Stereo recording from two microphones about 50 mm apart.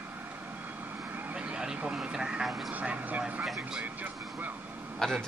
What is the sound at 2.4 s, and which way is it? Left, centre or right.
Speech, centre.